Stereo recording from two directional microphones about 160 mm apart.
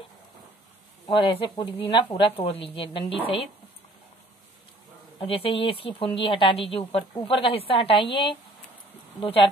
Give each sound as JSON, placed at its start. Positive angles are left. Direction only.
{"t": 1.0, "sound": "a woman's voice", "side_deg": 30}
{"t": 5.2, "sound": "a woman's voice", "side_deg": 35}